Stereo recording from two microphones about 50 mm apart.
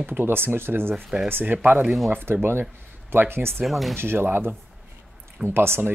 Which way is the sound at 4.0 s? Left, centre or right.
Right.